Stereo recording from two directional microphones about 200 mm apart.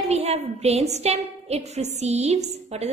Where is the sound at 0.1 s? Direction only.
30° right (ahead or behind).